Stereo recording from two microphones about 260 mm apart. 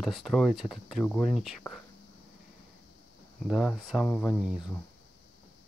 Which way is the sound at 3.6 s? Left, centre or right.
Centre.